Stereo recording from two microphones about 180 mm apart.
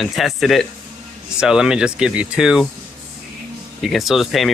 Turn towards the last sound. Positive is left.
turn(degrees=0)  # may be behind; listen again after turning